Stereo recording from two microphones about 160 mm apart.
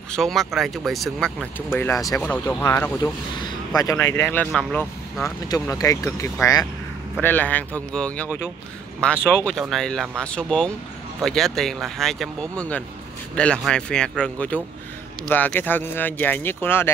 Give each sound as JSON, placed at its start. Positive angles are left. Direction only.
{"t": 0.1, "sound": "speech", "side_deg": 0}
{"t": 4.5, "sound": "speech", "side_deg": 5}
{"t": 5.2, "sound": "speech", "side_deg": 20}